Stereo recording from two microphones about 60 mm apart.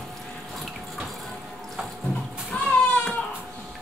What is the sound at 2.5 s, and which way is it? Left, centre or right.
Children playing, left.